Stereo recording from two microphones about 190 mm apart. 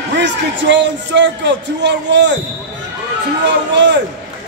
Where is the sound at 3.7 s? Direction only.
65° right (ahead or behind).